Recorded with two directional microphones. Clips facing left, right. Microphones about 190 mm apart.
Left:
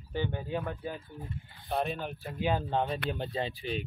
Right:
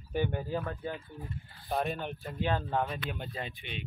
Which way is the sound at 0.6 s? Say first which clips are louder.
Even; 10° left (ahead or behind).